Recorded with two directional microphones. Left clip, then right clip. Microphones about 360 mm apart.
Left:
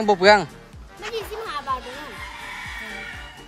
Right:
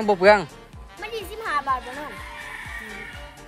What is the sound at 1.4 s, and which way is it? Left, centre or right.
Music, right.